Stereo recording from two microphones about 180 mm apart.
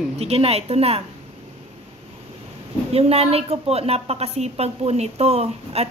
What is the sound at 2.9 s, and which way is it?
A woman's voice, 35° right (ahead or behind).